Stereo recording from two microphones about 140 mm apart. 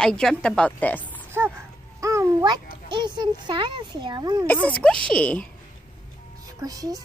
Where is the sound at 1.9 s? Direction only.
25° right (ahead or behind).